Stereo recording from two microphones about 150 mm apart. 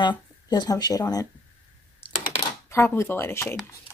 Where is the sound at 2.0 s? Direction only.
35° left (ahead or behind).